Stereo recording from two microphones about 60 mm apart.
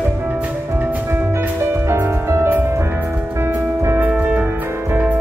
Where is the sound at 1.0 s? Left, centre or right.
Right.